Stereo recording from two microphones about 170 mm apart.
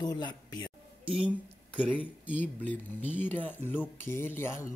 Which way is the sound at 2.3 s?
10° left (ahead or behind).